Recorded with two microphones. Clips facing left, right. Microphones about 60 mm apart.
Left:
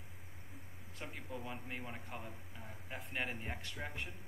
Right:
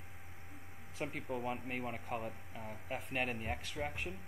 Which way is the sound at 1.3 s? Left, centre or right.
Right.